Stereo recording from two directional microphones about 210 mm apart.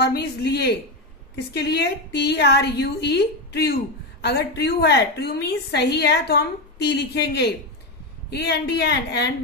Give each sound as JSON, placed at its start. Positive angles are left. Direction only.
{"t": 0.0, "sound": "a woman's voice", "side_deg": 50}